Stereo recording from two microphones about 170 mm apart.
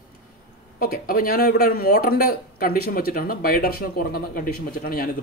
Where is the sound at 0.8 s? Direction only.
60° left (ahead or behind).